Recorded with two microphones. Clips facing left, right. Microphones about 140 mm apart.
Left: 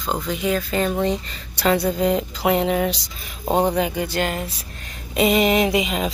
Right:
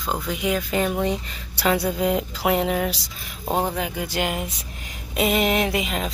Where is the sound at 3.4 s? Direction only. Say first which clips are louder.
Left 5 dB; 15° left (ahead or behind).